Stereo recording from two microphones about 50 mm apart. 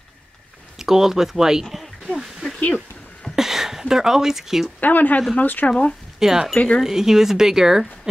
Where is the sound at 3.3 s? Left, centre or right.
Centre.